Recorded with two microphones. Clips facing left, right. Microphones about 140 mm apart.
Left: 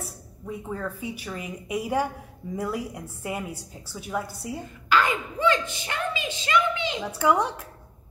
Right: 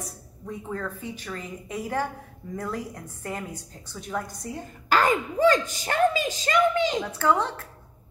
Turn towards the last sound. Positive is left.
turn(degrees=15)  # may be behind; listen again after turning